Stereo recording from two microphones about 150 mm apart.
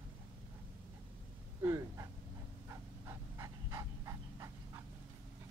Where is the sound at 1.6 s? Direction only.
20° right (ahead or behind).